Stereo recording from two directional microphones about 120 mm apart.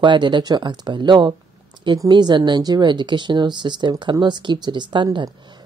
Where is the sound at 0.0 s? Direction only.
40° right (ahead or behind).